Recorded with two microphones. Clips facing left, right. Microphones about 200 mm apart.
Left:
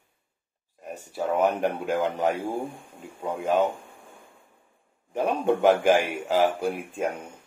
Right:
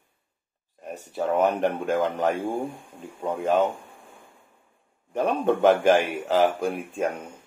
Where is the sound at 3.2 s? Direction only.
10° left (ahead or behind).